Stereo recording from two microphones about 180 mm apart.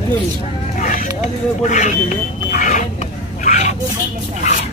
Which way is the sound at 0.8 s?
45° left (ahead or behind).